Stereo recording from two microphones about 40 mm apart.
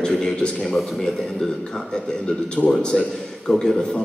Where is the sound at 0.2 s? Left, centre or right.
Centre.